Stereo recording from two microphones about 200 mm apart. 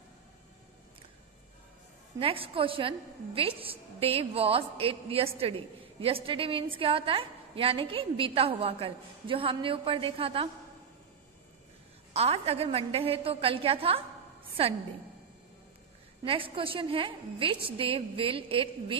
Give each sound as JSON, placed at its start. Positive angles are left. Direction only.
{"t": 2.1, "sound": "a woman's voice", "side_deg": -30}
{"t": 12.1, "sound": "a woman's voice", "side_deg": -30}
{"t": 16.3, "sound": "a woman's voice", "side_deg": -25}